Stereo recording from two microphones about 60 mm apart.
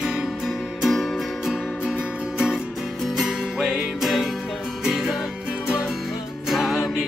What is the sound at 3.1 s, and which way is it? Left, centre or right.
Music, centre.